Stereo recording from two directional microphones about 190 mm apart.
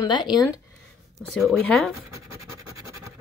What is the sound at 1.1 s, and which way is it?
Speech, centre (ahead or behind).